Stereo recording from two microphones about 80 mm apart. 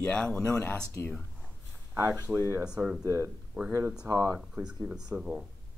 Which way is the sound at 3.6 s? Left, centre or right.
Centre.